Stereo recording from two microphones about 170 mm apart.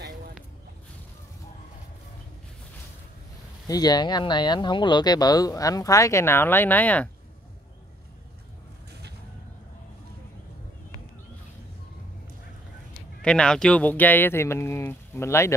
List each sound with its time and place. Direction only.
3.6 s speech: 20° left (ahead or behind)
13.2 s speech: 5° left (ahead or behind)